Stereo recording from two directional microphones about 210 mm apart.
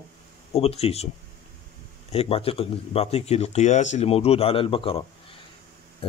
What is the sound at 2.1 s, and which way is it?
Speech, 25° left (ahead or behind).